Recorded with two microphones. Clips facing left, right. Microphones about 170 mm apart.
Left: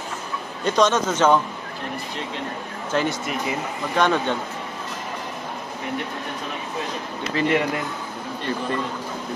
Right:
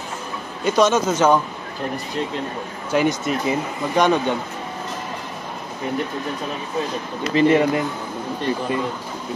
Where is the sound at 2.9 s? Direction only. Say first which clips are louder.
Right 4 dB; 10° right (ahead or behind).